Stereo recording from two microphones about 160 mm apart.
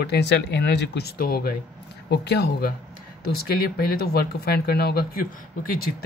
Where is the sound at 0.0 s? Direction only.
90° left; by 1.5 s 65° left (ahead or behind).